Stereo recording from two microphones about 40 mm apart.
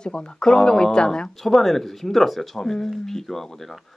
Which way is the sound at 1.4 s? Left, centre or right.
Centre.